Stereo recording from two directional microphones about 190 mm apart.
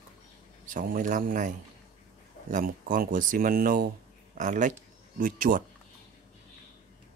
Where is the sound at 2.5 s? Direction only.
45° right (ahead or behind).